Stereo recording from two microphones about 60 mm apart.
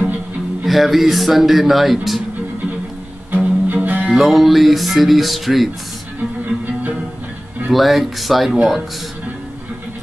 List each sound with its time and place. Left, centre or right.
0.7 s a man's voice: centre
3.3 s music: right
4.1 s a man's voice: centre
6.4 s music: right
7.7 s a man's voice: centre